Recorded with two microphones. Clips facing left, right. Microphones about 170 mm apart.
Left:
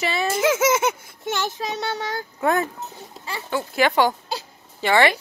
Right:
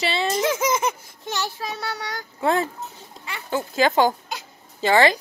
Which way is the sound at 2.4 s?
30° right (ahead or behind).